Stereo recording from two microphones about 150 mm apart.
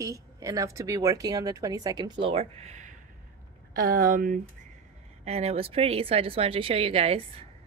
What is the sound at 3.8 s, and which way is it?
Speech, 80° right.